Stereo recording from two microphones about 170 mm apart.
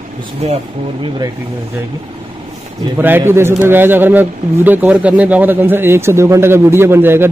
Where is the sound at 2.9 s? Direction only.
10° right (ahead or behind).